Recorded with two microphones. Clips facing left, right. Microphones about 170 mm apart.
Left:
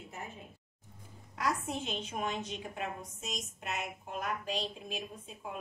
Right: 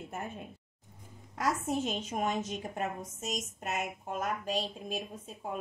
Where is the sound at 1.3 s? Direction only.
45° right (ahead or behind).